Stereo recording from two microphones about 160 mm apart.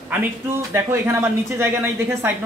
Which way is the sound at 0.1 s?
15° right (ahead or behind).